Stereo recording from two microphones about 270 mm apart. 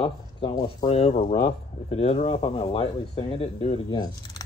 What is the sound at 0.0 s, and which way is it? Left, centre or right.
Speech, centre.